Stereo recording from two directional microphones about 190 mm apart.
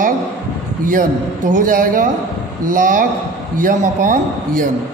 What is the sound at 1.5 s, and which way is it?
A man's voice, 45° right (ahead or behind).